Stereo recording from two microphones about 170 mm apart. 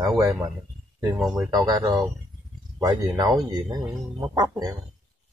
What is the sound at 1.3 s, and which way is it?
Speech, 20° right (ahead or behind).